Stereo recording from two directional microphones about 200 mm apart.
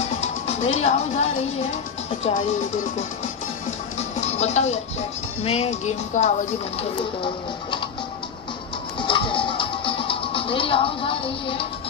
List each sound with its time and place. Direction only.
0.2 s speech: 35° left (ahead or behind)
4.3 s speech: 35° left (ahead or behind)
9.0 s music: 25° left (ahead or behind)